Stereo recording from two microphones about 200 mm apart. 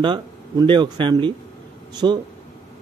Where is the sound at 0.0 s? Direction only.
25° right (ahead or behind).